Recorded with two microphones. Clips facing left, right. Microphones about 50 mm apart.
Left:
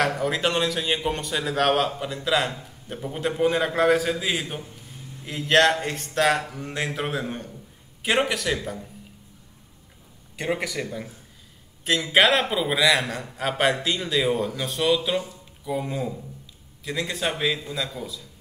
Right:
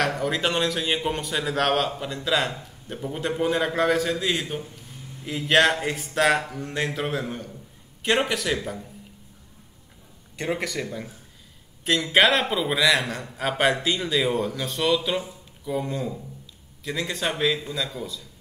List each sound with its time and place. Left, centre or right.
0.0 s a man's voice: centre
5.2 s a man's voice: centre
7.2 s a man's voice: left
8.0 s a man's voice: centre
10.3 s a man's voice: centre